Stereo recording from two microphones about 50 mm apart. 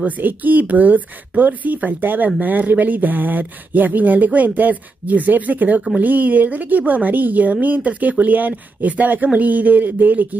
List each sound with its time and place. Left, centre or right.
0.0 s speech: right